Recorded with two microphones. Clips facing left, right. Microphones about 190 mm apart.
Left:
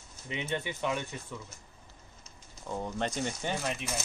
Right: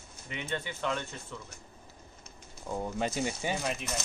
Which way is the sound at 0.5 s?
15° left (ahead or behind).